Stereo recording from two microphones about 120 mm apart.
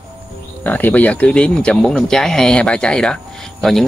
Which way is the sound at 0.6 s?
15° left (ahead or behind).